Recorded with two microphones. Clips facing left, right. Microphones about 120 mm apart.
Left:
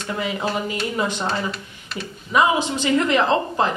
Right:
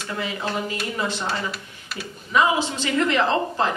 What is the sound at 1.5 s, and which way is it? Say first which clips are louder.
Speech: left 3 dB; 5° right (ahead or behind).